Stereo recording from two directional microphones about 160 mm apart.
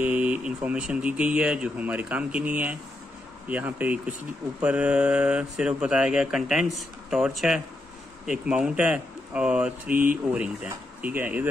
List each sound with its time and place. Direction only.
0.0 s speech: 10° right (ahead or behind)
9.8 s speech: 60° right (ahead or behind)
10.3 s speech: 5° right (ahead or behind)